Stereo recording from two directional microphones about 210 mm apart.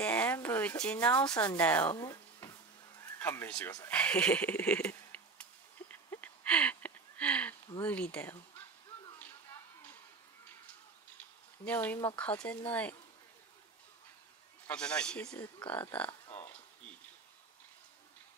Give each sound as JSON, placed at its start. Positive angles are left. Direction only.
{"t": 0.0, "sound": "speech", "side_deg": 5}
{"t": 3.7, "sound": "a sound", "side_deg": 10}
{"t": 7.8, "sound": "speech", "side_deg": 5}
{"t": 11.6, "sound": "speech", "side_deg": 10}
{"t": 14.7, "sound": "speech", "side_deg": 5}
{"t": 16.1, "sound": "a sound", "side_deg": 15}